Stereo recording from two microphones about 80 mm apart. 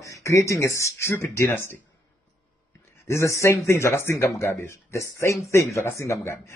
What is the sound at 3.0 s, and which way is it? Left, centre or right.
Speech, left.